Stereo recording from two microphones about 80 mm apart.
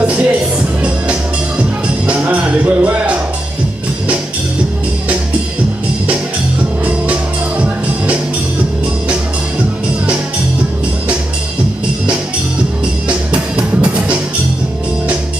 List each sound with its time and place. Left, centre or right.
0.0 s music: centre
13.3 s music: centre